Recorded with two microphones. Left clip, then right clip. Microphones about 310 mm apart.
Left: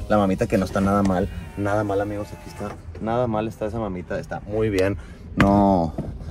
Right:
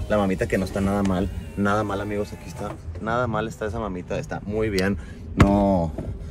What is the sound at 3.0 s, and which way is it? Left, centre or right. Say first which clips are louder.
Speech: left 1 dB; left.